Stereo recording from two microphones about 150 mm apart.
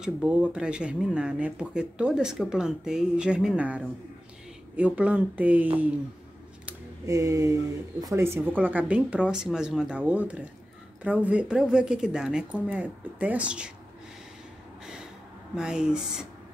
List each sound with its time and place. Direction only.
0.0 s speech: 10° right (ahead or behind)
7.1 s a sound: 20° right (ahead or behind)
8.0 s a woman's voice: 20° right (ahead or behind)
15.5 s a woman's voice: 5° right (ahead or behind)